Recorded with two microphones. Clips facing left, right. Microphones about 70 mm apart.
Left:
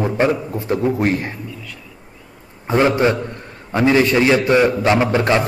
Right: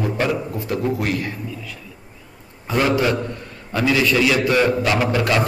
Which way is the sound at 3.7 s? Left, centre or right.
Left.